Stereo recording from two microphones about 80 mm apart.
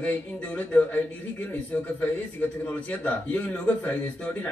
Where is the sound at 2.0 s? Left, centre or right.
Centre.